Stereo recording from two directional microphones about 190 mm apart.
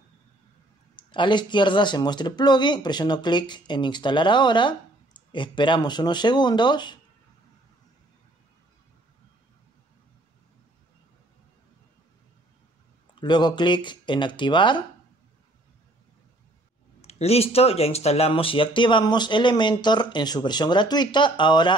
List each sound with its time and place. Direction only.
0.9 s speech: 25° left (ahead or behind)
13.1 s speech: 25° left (ahead or behind)
17.0 s speech: 35° left (ahead or behind)